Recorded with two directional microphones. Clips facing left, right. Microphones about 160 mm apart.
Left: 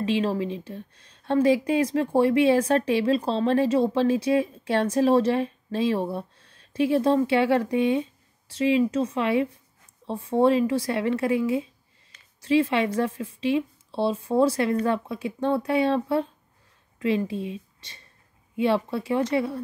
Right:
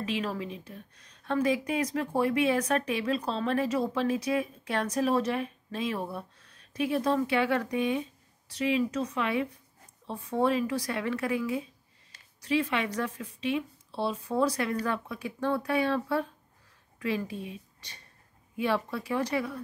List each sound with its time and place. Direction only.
0.0 s a woman's voice: 30° left (ahead or behind)